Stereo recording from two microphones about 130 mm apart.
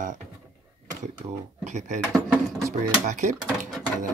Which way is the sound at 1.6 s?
65° right (ahead or behind).